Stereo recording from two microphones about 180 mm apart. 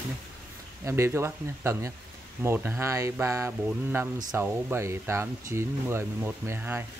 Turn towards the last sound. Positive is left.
turn(degrees=-10)  # may be behind; listen again after turning